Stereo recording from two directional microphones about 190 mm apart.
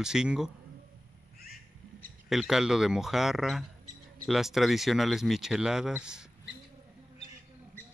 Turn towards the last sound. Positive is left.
turn(degrees=-5)  # may be behind; listen again after turning